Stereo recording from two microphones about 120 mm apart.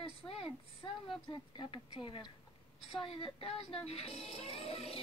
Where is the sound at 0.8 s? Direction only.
35° left (ahead or behind).